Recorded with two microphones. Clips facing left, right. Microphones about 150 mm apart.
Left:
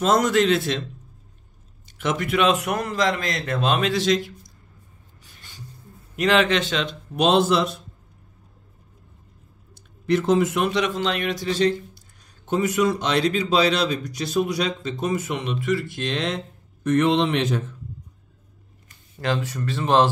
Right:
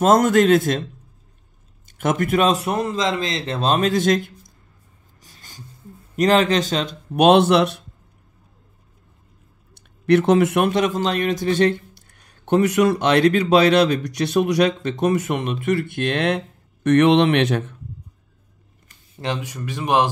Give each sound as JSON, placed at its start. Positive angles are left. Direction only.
{"t": 0.0, "sound": "a man's voice", "side_deg": -50}
{"t": 2.0, "sound": "a man's voice", "side_deg": -50}
{"t": 5.2, "sound": "a sound", "side_deg": -40}
{"t": 6.1, "sound": "a man's voice", "side_deg": -40}
{"t": 7.2, "sound": "a man's voice", "side_deg": -65}
{"t": 9.8, "sound": "a man's voice", "side_deg": -65}
{"t": 19.1, "sound": "speech", "side_deg": -20}